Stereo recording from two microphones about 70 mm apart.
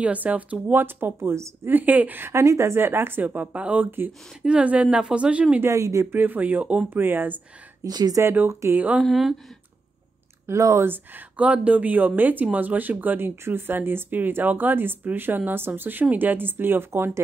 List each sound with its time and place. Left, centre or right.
0.0 s speech: right
1.7 s speech: right
2.2 s speech: right
4.4 s speech: centre
5.7 s speech: right
6.1 s speech: right
7.8 s speech: right
8.5 s speech: right
8.7 s speech: right
9.0 s speech: centre
10.4 s speech: right
10.8 s speech: right